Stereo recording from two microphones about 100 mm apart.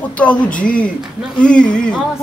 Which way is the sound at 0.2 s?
15° left (ahead or behind).